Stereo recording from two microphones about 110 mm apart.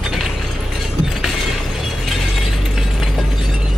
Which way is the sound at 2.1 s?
Centre (ahead or behind).